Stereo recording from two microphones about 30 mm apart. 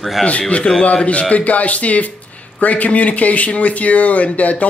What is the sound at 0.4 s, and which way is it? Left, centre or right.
Speech, left.